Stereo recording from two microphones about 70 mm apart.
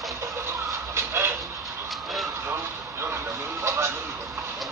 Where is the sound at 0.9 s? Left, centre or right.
Right.